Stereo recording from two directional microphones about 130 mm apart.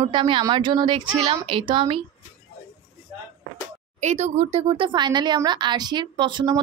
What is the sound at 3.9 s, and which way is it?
Speech, 65° right (ahead or behind).